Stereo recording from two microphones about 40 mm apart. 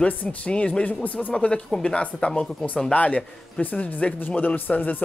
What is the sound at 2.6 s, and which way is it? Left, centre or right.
Speech, centre.